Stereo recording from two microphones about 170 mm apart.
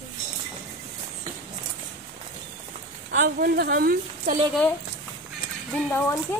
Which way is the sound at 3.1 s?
60° right (ahead or behind).